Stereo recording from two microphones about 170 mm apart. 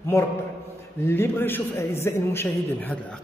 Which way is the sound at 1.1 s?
15° left (ahead or behind).